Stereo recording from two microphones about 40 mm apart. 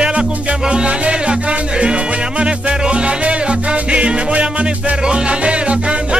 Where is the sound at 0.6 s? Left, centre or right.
Right.